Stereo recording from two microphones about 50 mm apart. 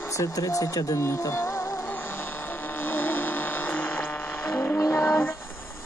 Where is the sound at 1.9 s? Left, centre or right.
Left.